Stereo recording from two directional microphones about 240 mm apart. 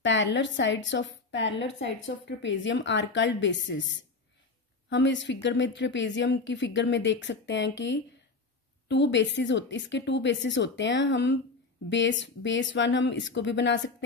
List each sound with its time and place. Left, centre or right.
0.0 s a woman's voice: left
4.8 s a woman's voice: left